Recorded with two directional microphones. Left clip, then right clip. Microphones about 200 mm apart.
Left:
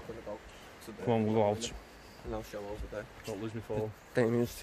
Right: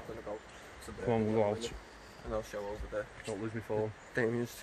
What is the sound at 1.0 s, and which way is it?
Speech, 20° left (ahead or behind).